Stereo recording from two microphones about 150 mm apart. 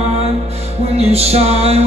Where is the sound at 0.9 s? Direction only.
45° right (ahead or behind).